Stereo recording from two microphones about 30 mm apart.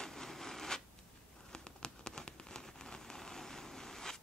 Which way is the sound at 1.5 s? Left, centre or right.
Left.